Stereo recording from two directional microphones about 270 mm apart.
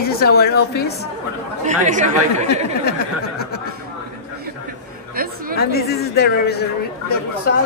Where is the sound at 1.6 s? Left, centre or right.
Right.